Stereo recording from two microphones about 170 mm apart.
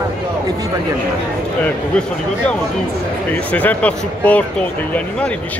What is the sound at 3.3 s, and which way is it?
Speech, 10° left (ahead or behind).